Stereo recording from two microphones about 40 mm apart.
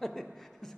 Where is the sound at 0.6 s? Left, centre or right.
Centre.